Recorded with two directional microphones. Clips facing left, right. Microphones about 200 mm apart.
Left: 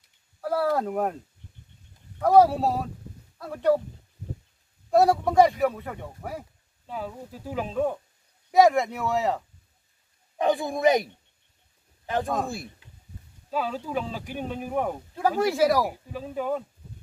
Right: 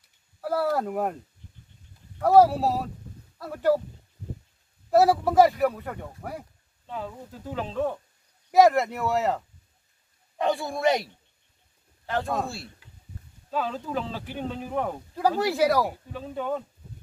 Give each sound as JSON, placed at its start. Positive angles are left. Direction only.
{"t": 0.4, "sound": "speech", "side_deg": -5}
{"t": 2.2, "sound": "speech", "side_deg": -5}
{"t": 4.9, "sound": "speech", "side_deg": -5}
{"t": 8.5, "sound": "speech", "side_deg": 0}
{"t": 10.3, "sound": "speech", "side_deg": 15}
{"t": 12.4, "sound": "speech", "side_deg": 15}
{"t": 15.1, "sound": "speech", "side_deg": 0}